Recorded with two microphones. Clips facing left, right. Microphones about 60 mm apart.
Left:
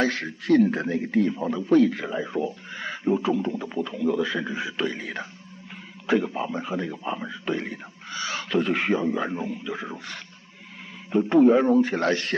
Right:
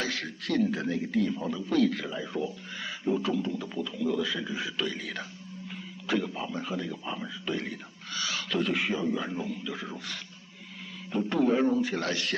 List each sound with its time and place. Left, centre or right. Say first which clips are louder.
0.0 s a man's voice: left 8 dB; left
1.8 s a man's voice: left 5 dB; left
8.7 s a man's voice: left 5 dB; left